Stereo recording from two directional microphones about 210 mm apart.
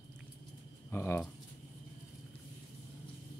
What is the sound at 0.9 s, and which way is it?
Speech, 10° left (ahead or behind).